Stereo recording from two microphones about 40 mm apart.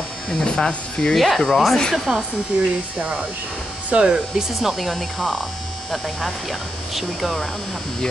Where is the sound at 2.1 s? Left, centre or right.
Right.